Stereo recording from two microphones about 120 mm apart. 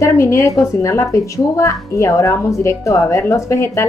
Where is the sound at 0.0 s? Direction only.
25° left (ahead or behind).